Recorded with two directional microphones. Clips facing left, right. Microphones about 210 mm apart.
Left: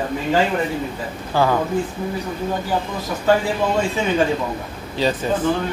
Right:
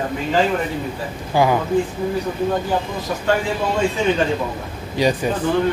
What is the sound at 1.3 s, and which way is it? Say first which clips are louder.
Speech: right 2 dB; 15° right (ahead or behind).